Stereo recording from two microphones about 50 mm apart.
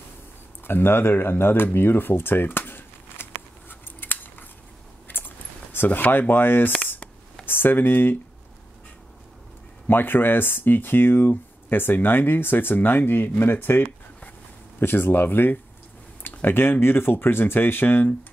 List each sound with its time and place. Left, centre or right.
0.7 s a sound: left
5.9 s speech: left
9.8 s speech: left